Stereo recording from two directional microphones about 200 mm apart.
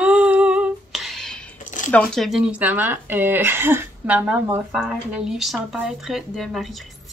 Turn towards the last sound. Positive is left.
turn(degrees=0)  # may be behind; listen again after turning